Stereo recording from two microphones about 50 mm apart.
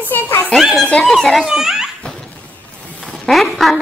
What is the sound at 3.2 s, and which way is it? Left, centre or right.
Speech, centre.